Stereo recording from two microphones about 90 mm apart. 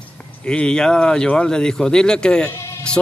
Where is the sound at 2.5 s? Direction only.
30° left (ahead or behind).